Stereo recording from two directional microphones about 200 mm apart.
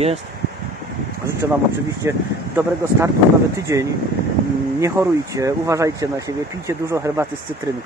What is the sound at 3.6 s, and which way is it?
Speech, 15° right (ahead or behind).